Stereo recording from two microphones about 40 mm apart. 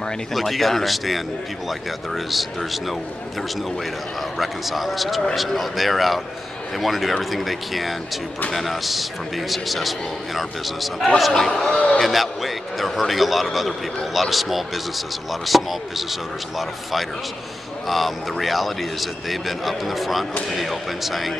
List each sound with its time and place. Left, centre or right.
0.3 s speech: centre
4.4 s speech: centre
11.3 s a man's voice: centre
11.7 s speech: left
12.0 s speech: centre